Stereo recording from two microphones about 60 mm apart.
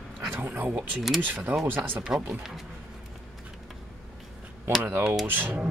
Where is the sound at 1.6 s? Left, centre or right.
Right.